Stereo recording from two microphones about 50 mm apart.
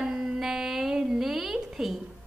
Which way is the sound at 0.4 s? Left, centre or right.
Centre.